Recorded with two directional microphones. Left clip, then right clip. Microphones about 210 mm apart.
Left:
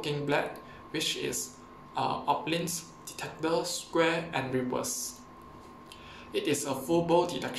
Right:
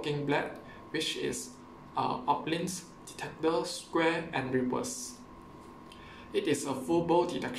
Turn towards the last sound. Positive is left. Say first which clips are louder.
# left 1 dB
turn(degrees=-5)  # may be behind; listen again after turning